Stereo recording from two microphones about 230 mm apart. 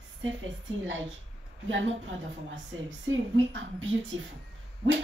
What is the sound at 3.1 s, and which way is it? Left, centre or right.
Speech, right.